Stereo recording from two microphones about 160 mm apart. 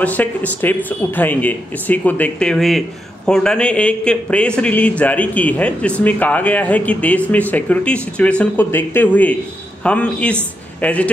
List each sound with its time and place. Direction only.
0.0 s a man's voice: 10° left (ahead or behind)